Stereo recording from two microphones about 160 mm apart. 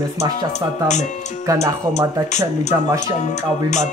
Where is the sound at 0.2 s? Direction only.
45° left (ahead or behind).